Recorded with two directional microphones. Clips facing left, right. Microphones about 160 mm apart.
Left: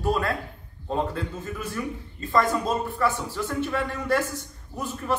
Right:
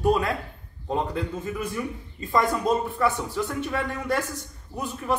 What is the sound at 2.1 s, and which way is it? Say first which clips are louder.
Speech: left 1 dB; 15° right (ahead or behind).